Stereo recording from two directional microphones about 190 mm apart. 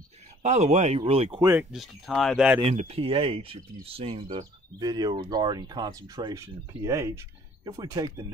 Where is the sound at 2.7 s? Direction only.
35° right (ahead or behind).